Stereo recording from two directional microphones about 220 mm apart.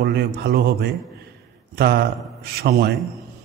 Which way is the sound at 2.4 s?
45° right (ahead or behind).